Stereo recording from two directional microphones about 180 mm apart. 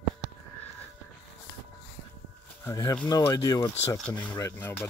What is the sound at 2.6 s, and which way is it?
Speech, 20° left (ahead or behind).